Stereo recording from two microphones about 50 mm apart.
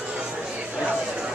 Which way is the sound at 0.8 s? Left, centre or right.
Right.